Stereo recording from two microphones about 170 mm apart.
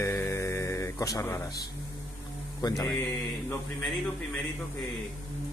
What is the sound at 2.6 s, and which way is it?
Mantra, 20° left (ahead or behind).